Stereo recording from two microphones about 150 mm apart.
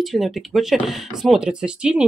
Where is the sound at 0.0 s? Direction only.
Centre (ahead or behind).